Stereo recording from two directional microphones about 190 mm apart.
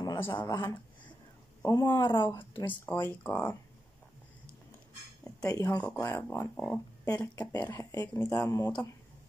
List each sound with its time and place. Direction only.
0.3 s speech: 25° left (ahead or behind)
2.8 s speech: 10° left (ahead or behind)
5.2 s speech: 15° left (ahead or behind)